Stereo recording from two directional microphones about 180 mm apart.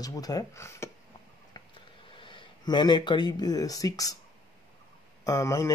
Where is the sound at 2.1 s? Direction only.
25° left (ahead or behind).